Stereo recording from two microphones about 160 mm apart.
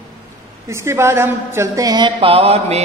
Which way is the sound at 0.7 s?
15° right (ahead or behind).